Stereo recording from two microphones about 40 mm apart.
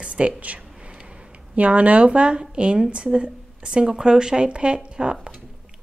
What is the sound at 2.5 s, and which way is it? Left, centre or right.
Speech, right.